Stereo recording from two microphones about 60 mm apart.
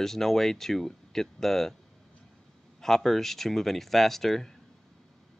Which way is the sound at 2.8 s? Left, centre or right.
Centre.